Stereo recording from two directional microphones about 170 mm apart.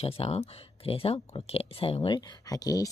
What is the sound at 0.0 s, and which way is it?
Speech, 35° left (ahead or behind).